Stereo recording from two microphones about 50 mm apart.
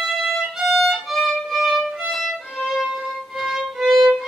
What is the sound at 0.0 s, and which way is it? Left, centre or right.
Violin, centre.